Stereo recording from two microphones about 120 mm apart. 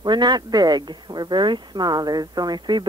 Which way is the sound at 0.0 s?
35° right (ahead or behind).